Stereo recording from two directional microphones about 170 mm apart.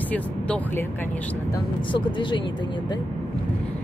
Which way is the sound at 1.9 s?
30° left (ahead or behind).